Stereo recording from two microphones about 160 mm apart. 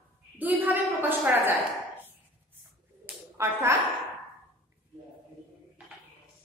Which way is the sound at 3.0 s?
15° right (ahead or behind).